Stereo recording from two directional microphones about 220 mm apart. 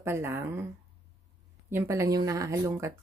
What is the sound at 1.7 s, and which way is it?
Speech, 10° right (ahead or behind).